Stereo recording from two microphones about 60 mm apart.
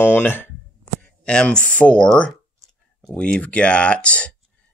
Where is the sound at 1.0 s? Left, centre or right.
Centre.